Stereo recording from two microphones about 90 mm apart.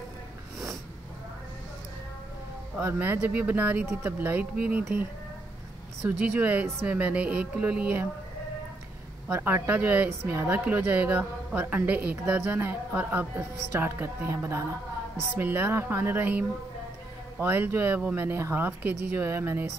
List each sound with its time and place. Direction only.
2.8 s a woman's voice: 20° right (ahead or behind)
6.0 s speech: 20° right (ahead or behind)
9.3 s a woman's voice: 25° right (ahead or behind)